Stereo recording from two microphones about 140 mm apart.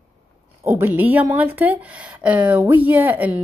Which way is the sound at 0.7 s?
15° right (ahead or behind).